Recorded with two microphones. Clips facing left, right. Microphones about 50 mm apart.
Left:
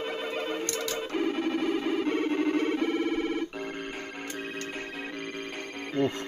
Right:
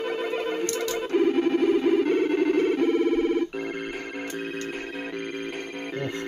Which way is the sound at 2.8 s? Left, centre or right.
Centre.